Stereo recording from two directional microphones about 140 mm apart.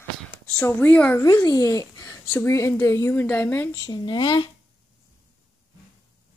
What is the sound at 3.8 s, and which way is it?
Speech, 30° left (ahead or behind).